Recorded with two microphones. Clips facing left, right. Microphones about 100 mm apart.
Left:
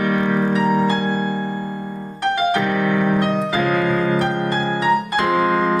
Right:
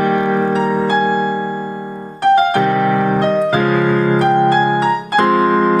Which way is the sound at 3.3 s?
55° right (ahead or behind).